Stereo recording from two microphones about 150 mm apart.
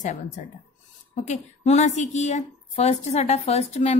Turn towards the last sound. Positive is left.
turn(degrees=45)  # may be behind; listen again after turning